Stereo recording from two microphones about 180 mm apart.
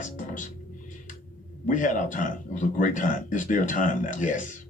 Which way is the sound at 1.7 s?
45° left (ahead or behind).